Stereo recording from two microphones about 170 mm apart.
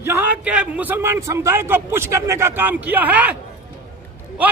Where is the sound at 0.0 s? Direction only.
15° right (ahead or behind).